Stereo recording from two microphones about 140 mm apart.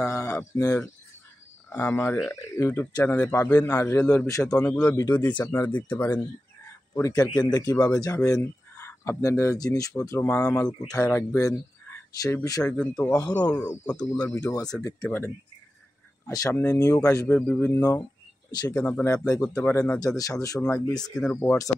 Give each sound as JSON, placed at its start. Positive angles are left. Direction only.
{"t": 0.0, "sound": "a man's voice", "side_deg": 20}
{"t": 4.5, "sound": "a man's voice", "side_deg": 10}
{"t": 4.9, "sound": "speech", "side_deg": 20}
{"t": 6.9, "sound": "speech", "side_deg": 25}
{"t": 12.7, "sound": "a man's voice", "side_deg": 5}
{"t": 14.8, "sound": "a man's voice", "side_deg": 20}
{"t": 18.5, "sound": "speech", "side_deg": 25}
{"t": 19.4, "sound": "a man's voice", "side_deg": 5}
{"t": 19.7, "sound": "speech", "side_deg": 20}
{"t": 21.0, "sound": "speech", "side_deg": 5}
{"t": 21.4, "sound": "speech", "side_deg": 20}